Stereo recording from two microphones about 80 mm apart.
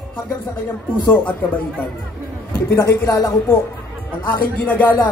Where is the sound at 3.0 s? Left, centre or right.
Left.